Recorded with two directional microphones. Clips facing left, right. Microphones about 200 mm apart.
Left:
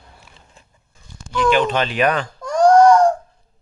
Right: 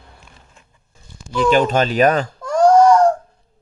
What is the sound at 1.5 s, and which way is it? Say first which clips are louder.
Speech: right 2 dB; 40° right (ahead or behind).